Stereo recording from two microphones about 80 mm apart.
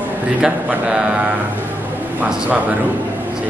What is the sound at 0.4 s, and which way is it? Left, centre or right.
Speech, centre.